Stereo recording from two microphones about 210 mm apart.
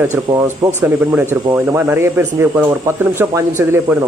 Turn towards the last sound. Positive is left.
turn(degrees=-10)  # may be behind; listen again after turning